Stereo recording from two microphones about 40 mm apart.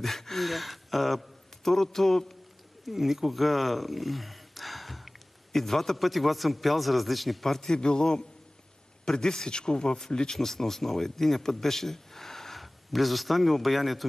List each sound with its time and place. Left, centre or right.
0.0 s a man's voice: centre
2.9 s speech: centre
7.6 s speech: left
10.3 s speech: centre